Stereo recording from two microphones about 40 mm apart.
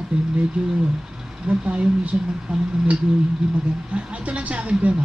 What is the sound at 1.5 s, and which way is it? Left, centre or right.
Speech, right.